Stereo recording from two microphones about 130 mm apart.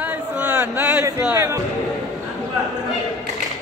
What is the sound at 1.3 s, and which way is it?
Music, 20° right (ahead or behind).